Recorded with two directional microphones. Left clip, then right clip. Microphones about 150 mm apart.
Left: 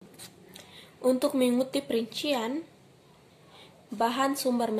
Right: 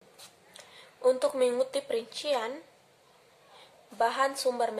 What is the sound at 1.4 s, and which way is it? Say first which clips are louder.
A woman's voice: even; centre (ahead or behind).